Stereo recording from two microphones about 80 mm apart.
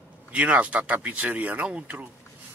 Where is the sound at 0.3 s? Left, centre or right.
Centre.